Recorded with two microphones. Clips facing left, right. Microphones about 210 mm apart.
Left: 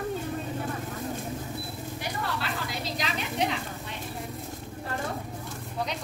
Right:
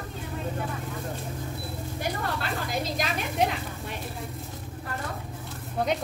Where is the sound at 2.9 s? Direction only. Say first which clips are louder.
Right 2 dB; 50° right (ahead or behind).